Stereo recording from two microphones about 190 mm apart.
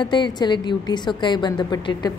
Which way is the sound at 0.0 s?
25° left (ahead or behind).